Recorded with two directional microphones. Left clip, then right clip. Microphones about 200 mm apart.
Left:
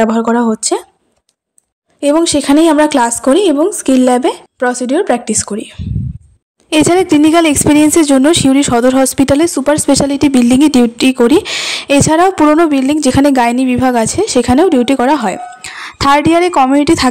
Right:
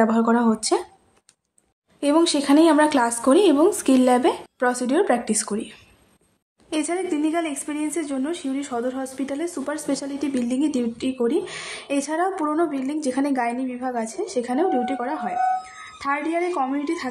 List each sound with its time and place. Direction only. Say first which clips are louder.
0.0 s speech: left 8 dB; 30° left (ahead or behind)
2.0 s speech: left 9 dB; 30° left (ahead or behind)
6.7 s a woman's voice: left 15 dB; 45° left (ahead or behind)